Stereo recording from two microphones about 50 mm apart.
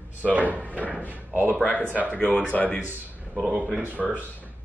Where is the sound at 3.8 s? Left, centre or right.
Right.